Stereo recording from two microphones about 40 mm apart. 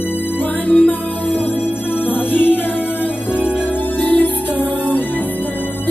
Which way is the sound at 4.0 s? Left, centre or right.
Left.